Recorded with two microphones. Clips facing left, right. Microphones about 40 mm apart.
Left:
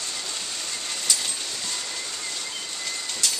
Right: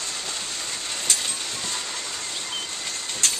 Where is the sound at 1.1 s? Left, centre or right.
Right.